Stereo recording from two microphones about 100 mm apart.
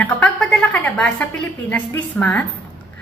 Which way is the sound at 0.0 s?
10° left (ahead or behind).